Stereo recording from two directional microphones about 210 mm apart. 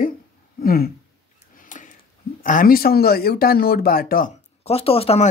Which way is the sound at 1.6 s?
40° left (ahead or behind).